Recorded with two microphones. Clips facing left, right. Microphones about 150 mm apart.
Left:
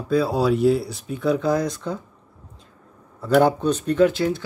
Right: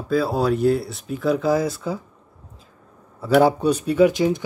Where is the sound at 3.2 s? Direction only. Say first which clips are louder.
Right 1 dB; 5° right (ahead or behind).